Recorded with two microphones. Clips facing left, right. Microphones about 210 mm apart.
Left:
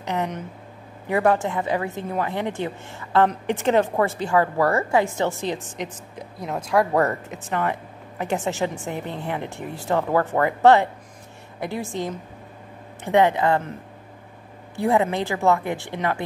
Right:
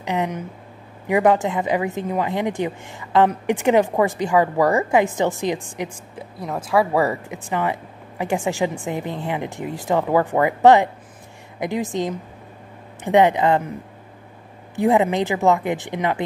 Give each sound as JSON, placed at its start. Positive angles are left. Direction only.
{"t": 0.0, "sound": "a woman's voice", "side_deg": -15}
{"t": 14.8, "sound": "a woman's voice", "side_deg": -20}